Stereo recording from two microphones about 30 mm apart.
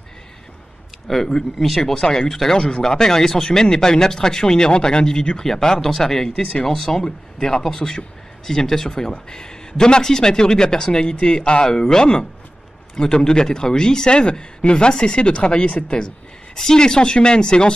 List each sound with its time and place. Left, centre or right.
1.0 s speech: centre
2.0 s speech: centre
7.0 s speech: left
16.5 s speech: left